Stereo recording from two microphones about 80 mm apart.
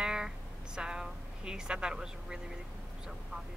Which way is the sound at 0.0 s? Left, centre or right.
Centre.